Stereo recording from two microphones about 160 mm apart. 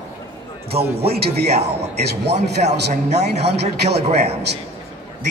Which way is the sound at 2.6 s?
55° right (ahead or behind).